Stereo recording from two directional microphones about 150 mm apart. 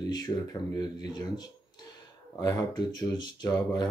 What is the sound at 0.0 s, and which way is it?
Speech, 25° left (ahead or behind).